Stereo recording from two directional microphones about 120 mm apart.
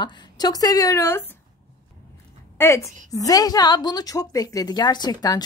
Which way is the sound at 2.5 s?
20° left (ahead or behind).